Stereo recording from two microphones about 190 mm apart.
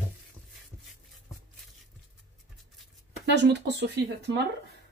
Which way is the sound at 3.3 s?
65° right (ahead or behind).